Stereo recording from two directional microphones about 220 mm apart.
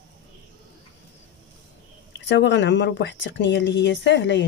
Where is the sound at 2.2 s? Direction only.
55° left (ahead or behind).